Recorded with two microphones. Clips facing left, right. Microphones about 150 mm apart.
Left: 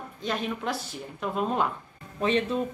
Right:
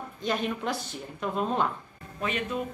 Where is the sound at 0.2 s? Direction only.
Centre (ahead or behind).